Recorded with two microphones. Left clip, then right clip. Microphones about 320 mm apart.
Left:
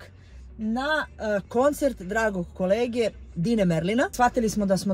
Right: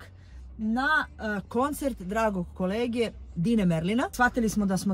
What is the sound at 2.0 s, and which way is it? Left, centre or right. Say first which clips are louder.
Speech: left 2 dB; left.